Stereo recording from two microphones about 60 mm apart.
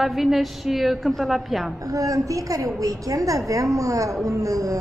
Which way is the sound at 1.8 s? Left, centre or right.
Right.